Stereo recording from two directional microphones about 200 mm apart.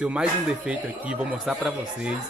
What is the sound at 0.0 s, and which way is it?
Speech, 5° right (ahead or behind).